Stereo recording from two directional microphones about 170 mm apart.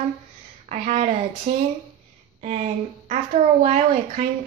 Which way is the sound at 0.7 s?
45° right (ahead or behind).